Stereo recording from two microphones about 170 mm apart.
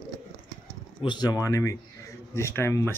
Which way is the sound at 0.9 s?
25° left (ahead or behind).